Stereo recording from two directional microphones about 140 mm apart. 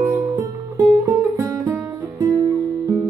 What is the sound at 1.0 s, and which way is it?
Music, 20° right (ahead or behind).